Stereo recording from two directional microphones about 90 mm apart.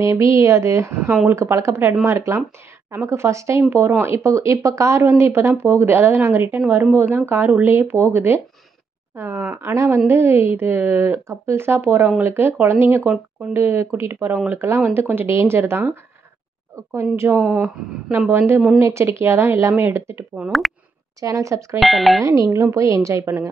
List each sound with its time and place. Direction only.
0.0 s speech: 35° right (ahead or behind); by 13.6 s 20° right (ahead or behind)
13.6 s speech: 30° right (ahead or behind)
18.8 s speech: 30° right (ahead or behind)
21.7 s speech: centre (ahead or behind)
22.2 s speech: 35° right (ahead or behind)